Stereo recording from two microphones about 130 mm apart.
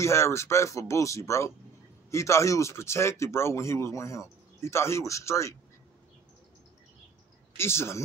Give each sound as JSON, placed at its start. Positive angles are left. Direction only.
{"t": 0.0, "sound": "speech", "side_deg": 20}
{"t": 7.5, "sound": "speech", "side_deg": 20}